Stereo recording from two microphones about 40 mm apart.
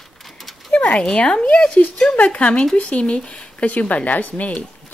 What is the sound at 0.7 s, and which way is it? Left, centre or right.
Speech, left.